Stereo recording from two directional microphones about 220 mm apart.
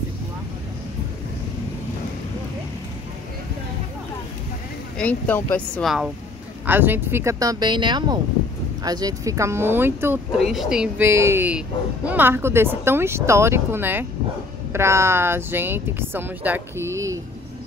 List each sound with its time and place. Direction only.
4.9 s speech: 5° left (ahead or behind); by 17.2 s 15° right (ahead or behind)